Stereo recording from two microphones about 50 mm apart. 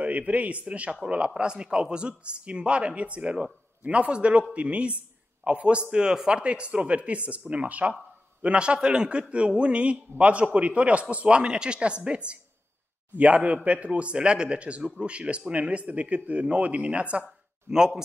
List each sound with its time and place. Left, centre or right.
0.0 s a man's voice: right
17.6 s speech: centre